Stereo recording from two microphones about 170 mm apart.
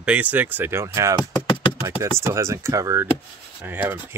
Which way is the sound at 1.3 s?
30° left (ahead or behind).